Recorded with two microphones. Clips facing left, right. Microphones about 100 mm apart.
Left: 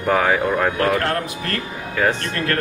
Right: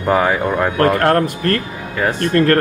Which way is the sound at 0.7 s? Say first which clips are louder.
Right 6 dB; 45° right (ahead or behind).